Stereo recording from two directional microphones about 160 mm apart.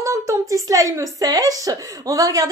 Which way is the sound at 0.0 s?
20° right (ahead or behind).